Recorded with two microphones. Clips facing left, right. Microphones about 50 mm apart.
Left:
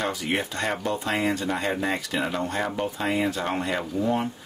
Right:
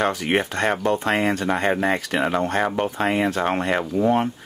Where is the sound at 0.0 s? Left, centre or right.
Right.